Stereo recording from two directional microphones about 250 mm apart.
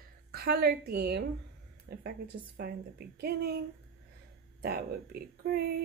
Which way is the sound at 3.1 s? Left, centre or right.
Right.